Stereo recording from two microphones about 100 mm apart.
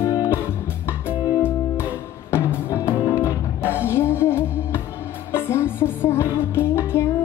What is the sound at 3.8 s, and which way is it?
Music, 25° left (ahead or behind).